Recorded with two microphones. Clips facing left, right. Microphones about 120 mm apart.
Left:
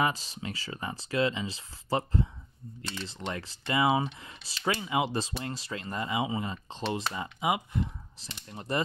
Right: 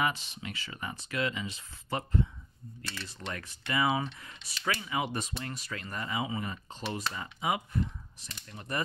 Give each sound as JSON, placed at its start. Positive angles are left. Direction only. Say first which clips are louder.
{"t": 0.0, "sound": "speech", "louder": "left 3 dB", "side_deg": 35}
{"t": 8.2, "sound": "speech", "louder": "left 5 dB", "side_deg": 30}